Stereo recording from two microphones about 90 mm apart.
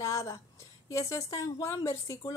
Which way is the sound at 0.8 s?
35° left (ahead or behind).